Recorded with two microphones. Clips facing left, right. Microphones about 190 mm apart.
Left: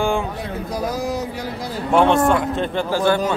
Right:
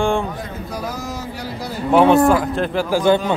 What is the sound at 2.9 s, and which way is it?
Speech, 15° right (ahead or behind).